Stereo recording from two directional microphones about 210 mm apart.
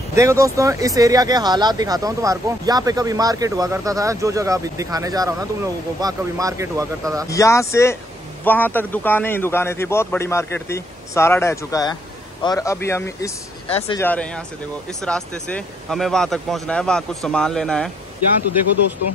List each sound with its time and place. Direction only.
0.1 s speech: 15° right (ahead or behind)
7.2 s a man's voice: 15° left (ahead or behind)
13.7 s speech: 30° left (ahead or behind)
13.9 s a man's voice: 10° left (ahead or behind)